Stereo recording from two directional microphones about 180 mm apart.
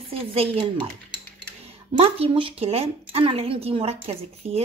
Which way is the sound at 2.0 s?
35° right (ahead or behind).